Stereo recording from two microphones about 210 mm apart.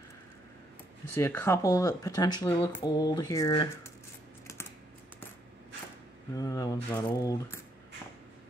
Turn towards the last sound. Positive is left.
turn(degrees=20)  # may be behind; listen again after turning